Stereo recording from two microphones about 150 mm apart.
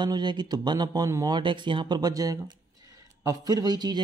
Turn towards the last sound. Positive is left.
turn(degrees=-25)  # may be behind; listen again after turning